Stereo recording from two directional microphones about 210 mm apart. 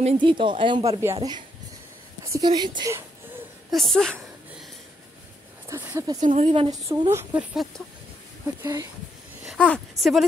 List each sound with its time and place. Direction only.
0.0 s speech: 25° right (ahead or behind)
3.7 s a sound: centre (ahead or behind)
5.7 s speech: 10° right (ahead or behind)
6.2 s speech: 35° right (ahead or behind)
6.9 s speech: 15° right (ahead or behind)
9.5 s speech: 5° left (ahead or behind)